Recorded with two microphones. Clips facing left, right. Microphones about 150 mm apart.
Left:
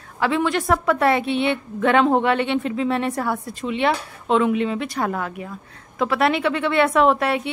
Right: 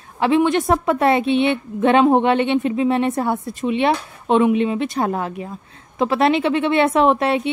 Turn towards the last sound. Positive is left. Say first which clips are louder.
# right 2 dB
turn(degrees=-25)  # may be behind; listen again after turning